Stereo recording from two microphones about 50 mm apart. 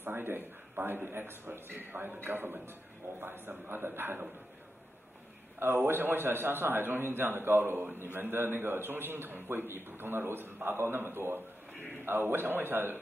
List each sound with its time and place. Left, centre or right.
0.0 s a man's voice: right
5.6 s a man's voice: right